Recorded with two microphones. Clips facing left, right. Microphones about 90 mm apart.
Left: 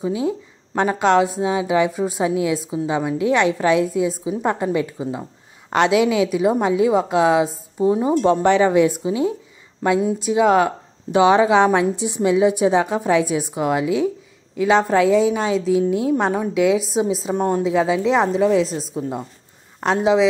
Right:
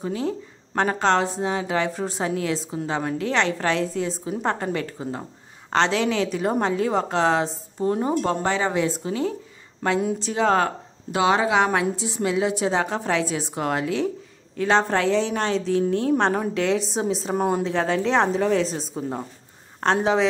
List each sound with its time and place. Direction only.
0.0 s speech: 15° left (ahead or behind)
9.9 s a woman's voice: 5° left (ahead or behind)